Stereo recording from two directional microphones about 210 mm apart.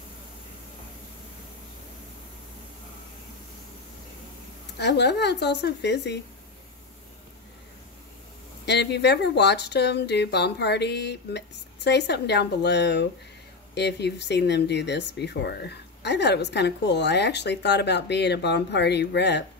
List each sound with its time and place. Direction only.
4.7 s speech: 55° left (ahead or behind)
8.6 s speech: 55° left (ahead or behind)